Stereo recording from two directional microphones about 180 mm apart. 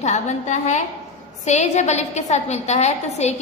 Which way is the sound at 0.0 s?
40° left (ahead or behind).